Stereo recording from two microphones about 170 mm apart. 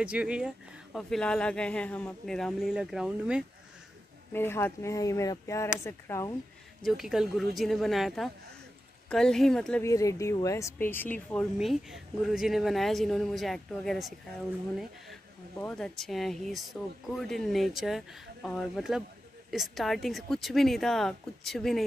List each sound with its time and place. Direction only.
0.0 s speech: 5° right (ahead or behind)
4.3 s speech: 15° left (ahead or behind)
6.8 s speech: centre (ahead or behind)
9.8 s speech: 20° left (ahead or behind); by 14.1 s centre (ahead or behind)
15.5 s speech: 10° left (ahead or behind)